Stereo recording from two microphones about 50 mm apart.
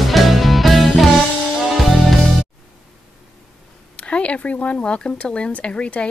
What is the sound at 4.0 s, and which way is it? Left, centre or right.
Speech, left.